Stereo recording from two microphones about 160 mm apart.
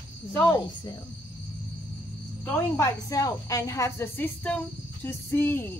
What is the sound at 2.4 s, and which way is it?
A woman's voice, 15° left (ahead or behind).